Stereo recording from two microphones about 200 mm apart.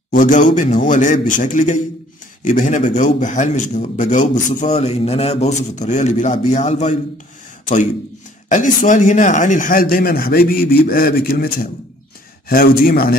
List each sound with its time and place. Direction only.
0.1 s a man's voice: 40° left (ahead or behind)